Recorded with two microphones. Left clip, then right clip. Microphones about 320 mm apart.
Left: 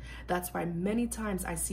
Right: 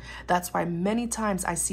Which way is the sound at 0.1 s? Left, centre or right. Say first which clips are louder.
Right 8 dB; centre.